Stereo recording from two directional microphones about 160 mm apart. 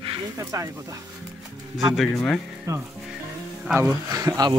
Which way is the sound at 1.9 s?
Centre (ahead or behind).